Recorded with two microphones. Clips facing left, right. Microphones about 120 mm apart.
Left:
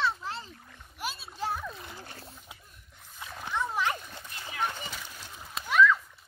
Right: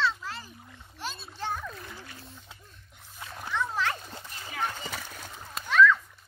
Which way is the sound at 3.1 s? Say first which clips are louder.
Even; centre (ahead or behind).